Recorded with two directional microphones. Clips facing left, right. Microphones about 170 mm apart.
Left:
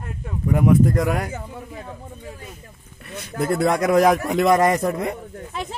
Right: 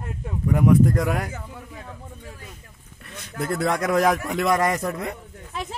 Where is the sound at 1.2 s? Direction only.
20° left (ahead or behind).